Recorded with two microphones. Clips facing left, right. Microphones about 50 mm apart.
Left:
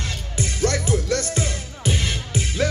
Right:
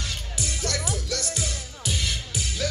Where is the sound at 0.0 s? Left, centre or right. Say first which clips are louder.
Left 5 dB; left.